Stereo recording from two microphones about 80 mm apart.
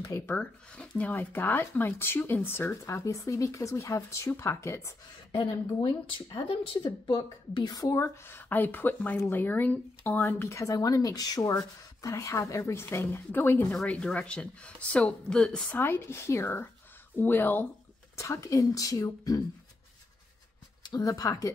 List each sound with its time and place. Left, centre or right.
0.0 s speech: left
0.4 s speech: centre; by 4.9 s left
5.7 s a woman's voice: left
7.6 s a woman's voice: left
10.5 s speech: left
13.8 s speech: centre
15.8 s a woman's voice: left
18.1 s speech: left
20.8 s speech: left